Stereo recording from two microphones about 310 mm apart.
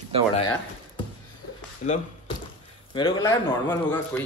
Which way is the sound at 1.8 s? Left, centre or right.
Left.